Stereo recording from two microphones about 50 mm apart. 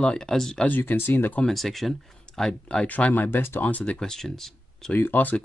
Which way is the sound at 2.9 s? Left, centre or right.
Left.